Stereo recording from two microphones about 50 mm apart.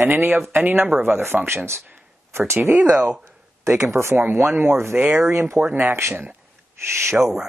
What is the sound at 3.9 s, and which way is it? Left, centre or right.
Speech, right.